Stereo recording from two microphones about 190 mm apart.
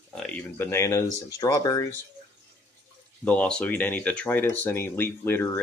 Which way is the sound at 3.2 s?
5° left (ahead or behind).